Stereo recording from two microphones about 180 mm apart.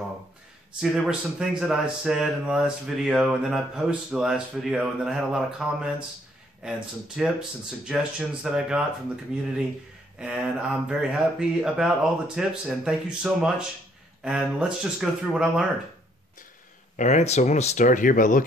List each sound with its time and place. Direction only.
0.7 s speech: 5° right (ahead or behind)
16.9 s speech: 40° left (ahead or behind)